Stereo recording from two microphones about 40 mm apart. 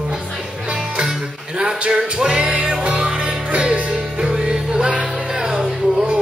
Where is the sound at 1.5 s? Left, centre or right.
Right.